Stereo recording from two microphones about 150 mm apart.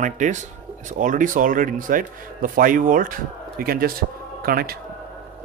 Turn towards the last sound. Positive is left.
turn(degrees=-90)